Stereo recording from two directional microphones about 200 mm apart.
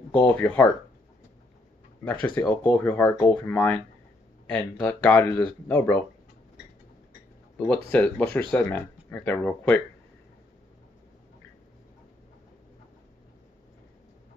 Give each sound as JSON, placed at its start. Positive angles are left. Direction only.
{"t": 0.3, "sound": "speech", "side_deg": 10}
{"t": 2.0, "sound": "speech", "side_deg": 5}
{"t": 7.5, "sound": "speech", "side_deg": 5}